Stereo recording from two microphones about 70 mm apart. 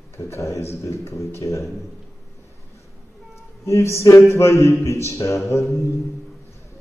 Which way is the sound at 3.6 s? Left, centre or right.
Left.